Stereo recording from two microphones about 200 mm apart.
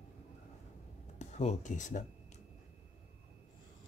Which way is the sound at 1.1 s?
35° left (ahead or behind).